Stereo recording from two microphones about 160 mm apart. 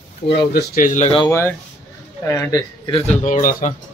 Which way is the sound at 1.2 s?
15° left (ahead or behind).